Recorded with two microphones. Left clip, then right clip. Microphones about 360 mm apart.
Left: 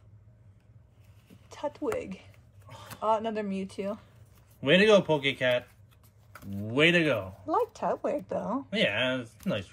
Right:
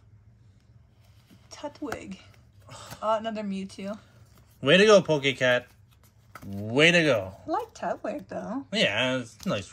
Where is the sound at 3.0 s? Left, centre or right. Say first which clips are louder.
Even; centre.